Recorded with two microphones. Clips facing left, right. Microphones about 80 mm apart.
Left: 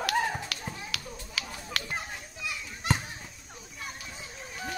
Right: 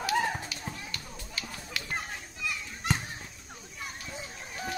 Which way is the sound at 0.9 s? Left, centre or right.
Left.